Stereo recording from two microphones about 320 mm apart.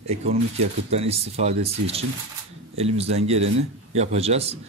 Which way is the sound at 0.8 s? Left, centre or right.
Centre.